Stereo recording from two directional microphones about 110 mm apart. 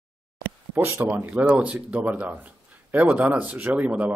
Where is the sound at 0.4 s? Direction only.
15° right (ahead or behind).